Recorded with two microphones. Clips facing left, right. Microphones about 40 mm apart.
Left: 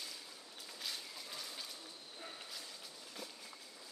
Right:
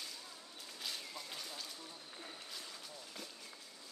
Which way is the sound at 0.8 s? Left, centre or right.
Centre.